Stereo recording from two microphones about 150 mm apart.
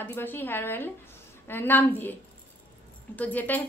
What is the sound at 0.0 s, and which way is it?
A woman's voice, 15° left (ahead or behind).